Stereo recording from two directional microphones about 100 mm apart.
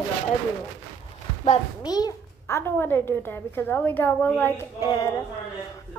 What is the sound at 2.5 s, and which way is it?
A woman's voice, 25° left (ahead or behind).